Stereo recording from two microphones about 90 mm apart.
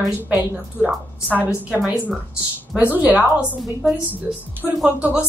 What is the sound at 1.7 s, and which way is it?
Speech, 10° right (ahead or behind).